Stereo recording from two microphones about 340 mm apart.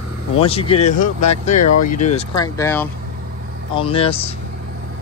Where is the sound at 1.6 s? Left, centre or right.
Left.